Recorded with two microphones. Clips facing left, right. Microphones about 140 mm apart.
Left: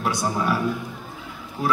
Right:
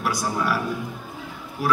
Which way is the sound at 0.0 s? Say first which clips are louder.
Left 1 dB; 25° left (ahead or behind).